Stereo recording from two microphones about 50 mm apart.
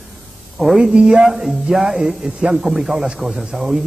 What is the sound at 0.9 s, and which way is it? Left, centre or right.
Speech, centre.